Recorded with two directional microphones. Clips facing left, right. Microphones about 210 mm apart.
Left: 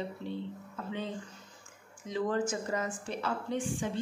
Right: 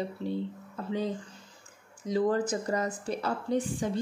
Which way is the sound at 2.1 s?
35° right (ahead or behind).